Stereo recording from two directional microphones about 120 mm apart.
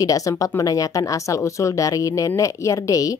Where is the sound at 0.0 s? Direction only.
30° left (ahead or behind).